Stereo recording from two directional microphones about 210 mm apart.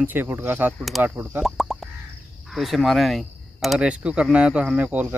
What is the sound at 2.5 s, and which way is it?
Speech, centre (ahead or behind).